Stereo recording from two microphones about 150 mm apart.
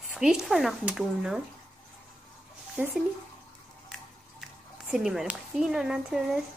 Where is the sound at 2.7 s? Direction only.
10° right (ahead or behind).